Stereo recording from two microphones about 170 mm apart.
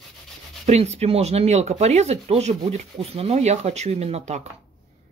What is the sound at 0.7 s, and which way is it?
Speech, 40° right (ahead or behind).